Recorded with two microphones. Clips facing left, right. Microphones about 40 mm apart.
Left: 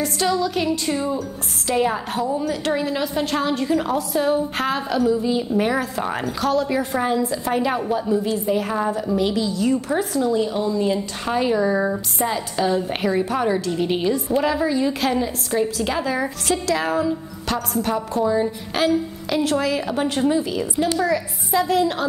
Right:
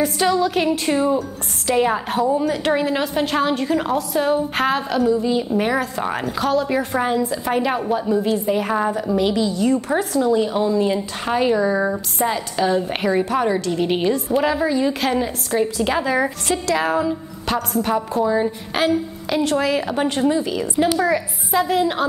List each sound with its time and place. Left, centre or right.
0.0 s speech: centre
0.4 s music: right
1.8 s a woman's voice: centre
10.5 s speech: centre
20.8 s music: centre
21.5 s speech: centre